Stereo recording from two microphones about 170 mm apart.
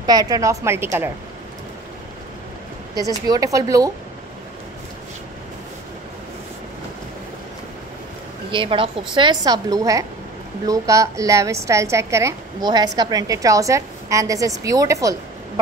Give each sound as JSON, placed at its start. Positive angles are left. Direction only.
{"t": 0.0, "sound": "a woman's voice", "side_deg": -20}
{"t": 3.3, "sound": "a woman's voice", "side_deg": -20}
{"t": 8.5, "sound": "a woman's voice", "side_deg": -30}